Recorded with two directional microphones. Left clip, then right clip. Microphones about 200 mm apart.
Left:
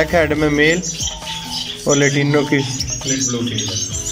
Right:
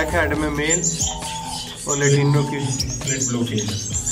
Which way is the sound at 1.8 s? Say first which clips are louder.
Left 4 dB; 25° left (ahead or behind).